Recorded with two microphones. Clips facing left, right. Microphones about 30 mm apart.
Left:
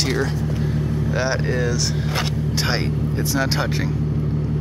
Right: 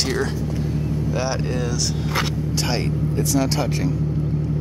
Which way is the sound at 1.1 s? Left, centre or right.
Centre.